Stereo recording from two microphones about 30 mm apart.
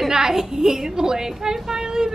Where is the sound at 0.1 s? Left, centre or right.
Centre.